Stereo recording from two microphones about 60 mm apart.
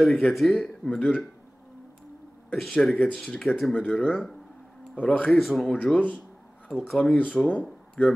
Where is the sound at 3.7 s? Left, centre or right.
Left.